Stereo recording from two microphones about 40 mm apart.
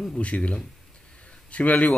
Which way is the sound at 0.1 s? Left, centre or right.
Left.